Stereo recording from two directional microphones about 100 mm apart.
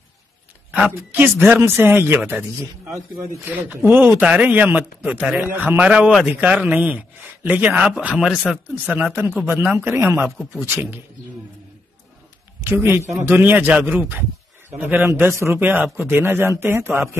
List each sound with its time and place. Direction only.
0.7 s a sound: centre (ahead or behind)
1.1 s speech: 20° right (ahead or behind)
3.4 s speech: 15° right (ahead or behind)
12.6 s speech: 25° right (ahead or behind)